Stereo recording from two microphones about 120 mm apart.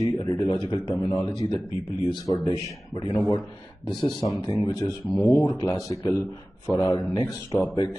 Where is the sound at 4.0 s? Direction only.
40° left (ahead or behind).